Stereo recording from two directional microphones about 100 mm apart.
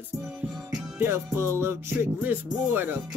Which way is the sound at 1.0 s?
25° right (ahead or behind).